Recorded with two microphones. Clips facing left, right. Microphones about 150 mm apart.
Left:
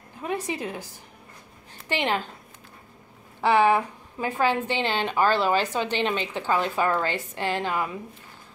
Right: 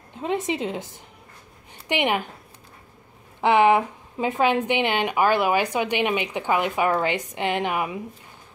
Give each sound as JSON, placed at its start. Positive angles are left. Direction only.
{"t": 0.2, "sound": "a woman's voice", "side_deg": -20}
{"t": 3.3, "sound": "a woman's voice", "side_deg": -20}